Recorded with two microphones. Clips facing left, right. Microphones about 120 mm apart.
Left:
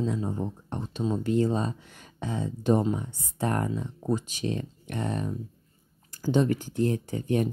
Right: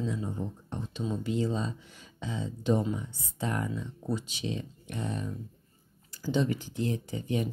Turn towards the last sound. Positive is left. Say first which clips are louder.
# left 5 dB
turn(degrees=50)  # may be behind; listen again after turning